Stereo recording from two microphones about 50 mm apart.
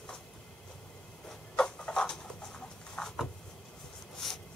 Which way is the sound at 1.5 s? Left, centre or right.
Centre.